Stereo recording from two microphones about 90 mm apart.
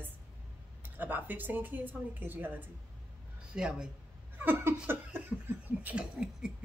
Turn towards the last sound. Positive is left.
turn(degrees=-10)  # may be behind; listen again after turning